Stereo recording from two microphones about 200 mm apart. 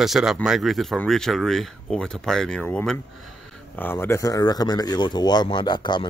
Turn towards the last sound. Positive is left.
turn(degrees=20)  # may be behind; listen again after turning